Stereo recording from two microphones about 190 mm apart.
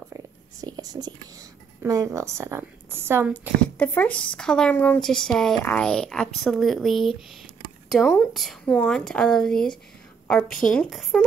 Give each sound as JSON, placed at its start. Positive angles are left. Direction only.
{"t": 0.1, "sound": "whispering", "side_deg": -20}
{"t": 1.8, "sound": "a woman's voice", "side_deg": -15}
{"t": 3.7, "sound": "speech", "side_deg": 10}